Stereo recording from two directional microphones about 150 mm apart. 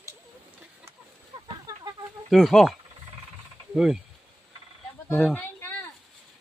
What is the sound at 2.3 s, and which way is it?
Speech, centre (ahead or behind).